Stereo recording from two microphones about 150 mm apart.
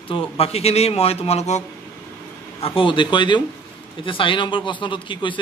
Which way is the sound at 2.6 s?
35° left (ahead or behind).